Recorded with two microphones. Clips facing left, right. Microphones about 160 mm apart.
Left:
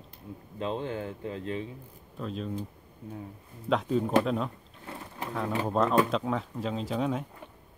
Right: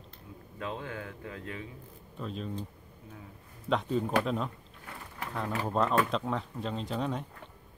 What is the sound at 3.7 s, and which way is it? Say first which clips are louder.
Speech: left 3 dB; centre (ahead or behind).